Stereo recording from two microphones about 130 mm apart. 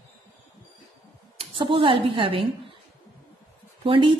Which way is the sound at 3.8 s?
45° right (ahead or behind).